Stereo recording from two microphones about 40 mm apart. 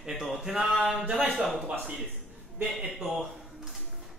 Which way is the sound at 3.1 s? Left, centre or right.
Centre.